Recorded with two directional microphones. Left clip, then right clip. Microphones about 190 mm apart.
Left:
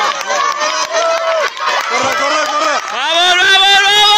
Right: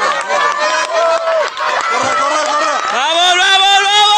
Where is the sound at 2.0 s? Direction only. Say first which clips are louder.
Even; 45° left (ahead or behind).